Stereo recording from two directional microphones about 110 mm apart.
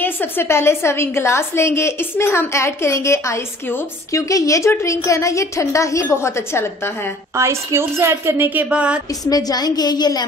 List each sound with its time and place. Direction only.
0.0 s a woman's voice: 20° left (ahead or behind)
7.3 s a woman's voice: 25° right (ahead or behind)
9.2 s a woman's voice: 35° left (ahead or behind)